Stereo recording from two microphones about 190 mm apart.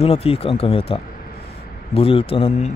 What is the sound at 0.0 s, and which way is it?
Speech, 30° left (ahead or behind).